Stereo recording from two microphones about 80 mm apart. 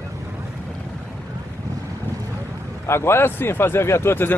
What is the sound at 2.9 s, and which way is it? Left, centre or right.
Speech, left.